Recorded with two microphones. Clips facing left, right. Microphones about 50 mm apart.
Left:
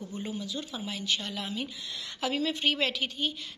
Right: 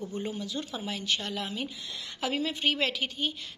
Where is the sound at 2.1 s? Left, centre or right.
Right.